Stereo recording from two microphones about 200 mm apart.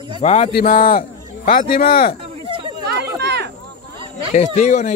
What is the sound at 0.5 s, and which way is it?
Speech, 45° left (ahead or behind).